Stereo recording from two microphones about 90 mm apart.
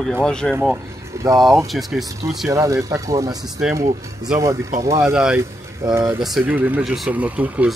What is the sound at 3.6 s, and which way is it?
Speech, 10° right (ahead or behind).